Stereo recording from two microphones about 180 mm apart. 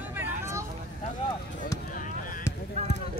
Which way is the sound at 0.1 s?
10° right (ahead or behind).